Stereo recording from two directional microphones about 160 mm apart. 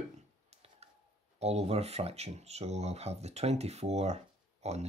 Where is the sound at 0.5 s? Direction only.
40° right (ahead or behind).